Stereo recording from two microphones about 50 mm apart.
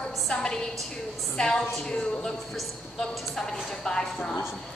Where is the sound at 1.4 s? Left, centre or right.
Centre.